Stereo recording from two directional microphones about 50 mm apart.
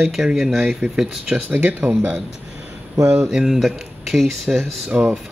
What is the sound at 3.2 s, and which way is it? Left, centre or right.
Speech, centre.